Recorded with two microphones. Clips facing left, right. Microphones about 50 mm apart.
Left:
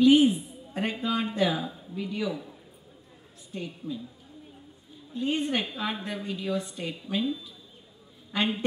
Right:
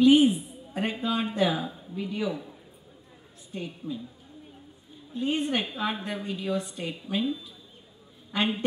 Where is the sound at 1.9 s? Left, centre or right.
Right.